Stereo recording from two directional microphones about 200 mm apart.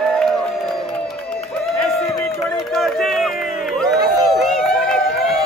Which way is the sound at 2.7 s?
Centre (ahead or behind).